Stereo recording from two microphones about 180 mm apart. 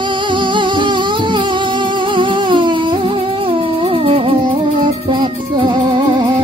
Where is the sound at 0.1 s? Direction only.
25° right (ahead or behind).